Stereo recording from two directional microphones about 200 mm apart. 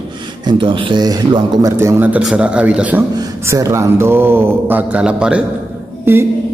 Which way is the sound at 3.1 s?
15° right (ahead or behind).